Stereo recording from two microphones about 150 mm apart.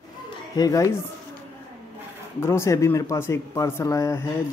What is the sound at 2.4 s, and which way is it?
Speech, 20° left (ahead or behind).